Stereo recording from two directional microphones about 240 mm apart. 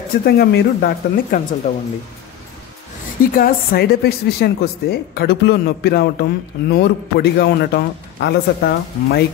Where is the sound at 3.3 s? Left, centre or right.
Left.